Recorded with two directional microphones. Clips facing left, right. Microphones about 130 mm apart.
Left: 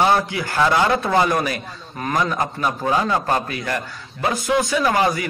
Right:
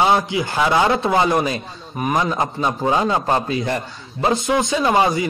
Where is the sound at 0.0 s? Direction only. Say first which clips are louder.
Right 1 dB; 20° right (ahead or behind).